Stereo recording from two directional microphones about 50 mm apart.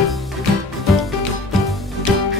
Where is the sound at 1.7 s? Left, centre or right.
Centre.